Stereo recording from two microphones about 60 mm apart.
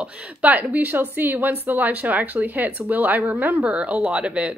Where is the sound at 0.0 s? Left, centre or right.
Right.